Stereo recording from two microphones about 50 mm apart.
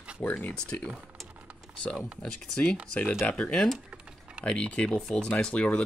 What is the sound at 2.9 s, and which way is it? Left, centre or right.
Speech, left.